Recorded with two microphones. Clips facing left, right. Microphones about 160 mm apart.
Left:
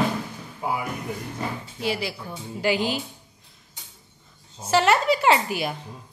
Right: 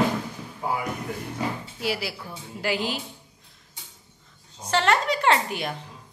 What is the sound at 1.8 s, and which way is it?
Speech, 5° right (ahead or behind).